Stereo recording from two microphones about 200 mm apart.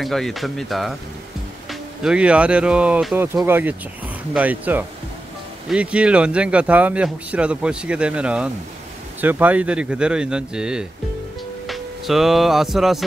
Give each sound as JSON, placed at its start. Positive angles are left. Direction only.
{"t": 0.0, "sound": "speech", "side_deg": 0}